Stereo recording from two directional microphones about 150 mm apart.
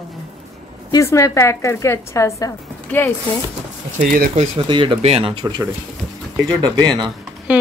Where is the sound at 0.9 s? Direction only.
20° left (ahead or behind).